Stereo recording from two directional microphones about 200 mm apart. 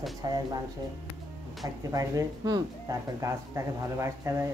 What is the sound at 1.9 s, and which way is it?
A woman's voice, 15° right (ahead or behind).